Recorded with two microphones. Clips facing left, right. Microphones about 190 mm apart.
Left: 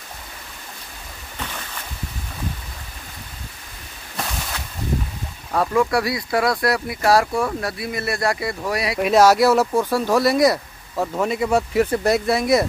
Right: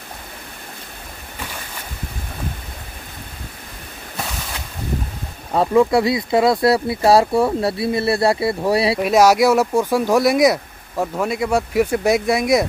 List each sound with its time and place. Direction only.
5.5 s speech: 25° right (ahead or behind)
9.0 s speech: 10° right (ahead or behind)